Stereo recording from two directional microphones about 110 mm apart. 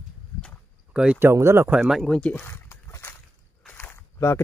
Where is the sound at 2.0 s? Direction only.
10° left (ahead or behind).